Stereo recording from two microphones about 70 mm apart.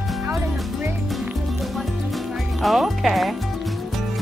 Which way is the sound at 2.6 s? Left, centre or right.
Centre.